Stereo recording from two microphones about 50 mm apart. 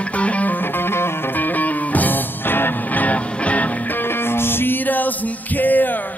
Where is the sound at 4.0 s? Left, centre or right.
Left.